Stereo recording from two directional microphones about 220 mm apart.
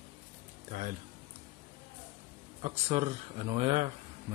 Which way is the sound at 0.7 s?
35° right (ahead or behind).